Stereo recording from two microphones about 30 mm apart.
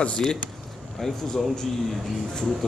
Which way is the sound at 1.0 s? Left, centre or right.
Centre.